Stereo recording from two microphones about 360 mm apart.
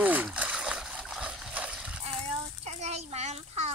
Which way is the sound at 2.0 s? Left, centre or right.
Centre.